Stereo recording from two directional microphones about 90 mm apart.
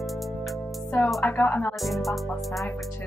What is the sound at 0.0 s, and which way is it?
Music, centre (ahead or behind).